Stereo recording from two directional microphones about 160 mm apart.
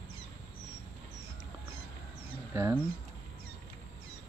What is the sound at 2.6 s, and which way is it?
Speech, 15° right (ahead or behind).